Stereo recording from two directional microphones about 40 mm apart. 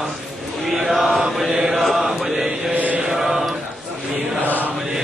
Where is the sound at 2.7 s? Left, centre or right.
Right.